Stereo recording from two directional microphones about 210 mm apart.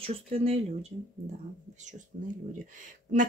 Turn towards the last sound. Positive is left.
turn(degrees=-40)  # may be behind; listen again after turning